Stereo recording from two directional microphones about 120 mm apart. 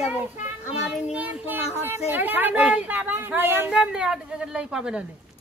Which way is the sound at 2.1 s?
15° right (ahead or behind).